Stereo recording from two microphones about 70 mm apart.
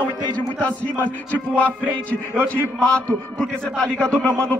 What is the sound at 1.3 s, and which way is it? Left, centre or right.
Music, centre.